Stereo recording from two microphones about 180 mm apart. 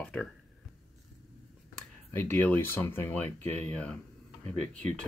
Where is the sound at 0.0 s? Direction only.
5° left (ahead or behind).